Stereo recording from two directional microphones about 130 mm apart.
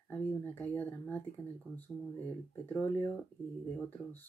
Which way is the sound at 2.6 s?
15° left (ahead or behind).